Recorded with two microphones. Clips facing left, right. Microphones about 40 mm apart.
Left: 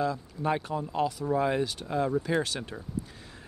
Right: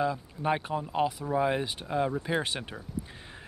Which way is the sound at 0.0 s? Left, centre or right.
Right.